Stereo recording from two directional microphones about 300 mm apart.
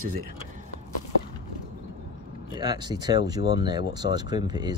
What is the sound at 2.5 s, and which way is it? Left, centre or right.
A man's voice, centre.